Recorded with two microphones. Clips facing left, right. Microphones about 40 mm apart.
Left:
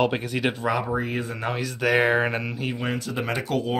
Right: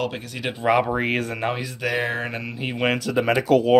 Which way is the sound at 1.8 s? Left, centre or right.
Centre.